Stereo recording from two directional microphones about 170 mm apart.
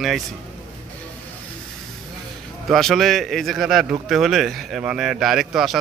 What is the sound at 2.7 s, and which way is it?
A man's voice, centre (ahead or behind).